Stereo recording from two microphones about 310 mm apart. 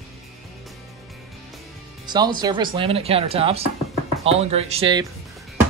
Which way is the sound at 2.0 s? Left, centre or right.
Centre.